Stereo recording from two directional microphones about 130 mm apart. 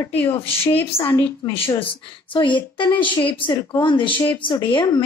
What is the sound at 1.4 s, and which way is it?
Speech, 30° left (ahead or behind).